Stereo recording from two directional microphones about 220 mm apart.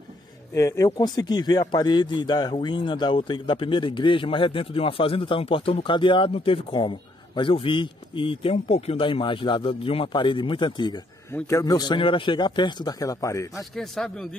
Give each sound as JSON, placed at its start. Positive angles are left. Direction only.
{"t": 0.6, "sound": "a man's voice", "side_deg": 15}
{"t": 13.6, "sound": "speech", "side_deg": 0}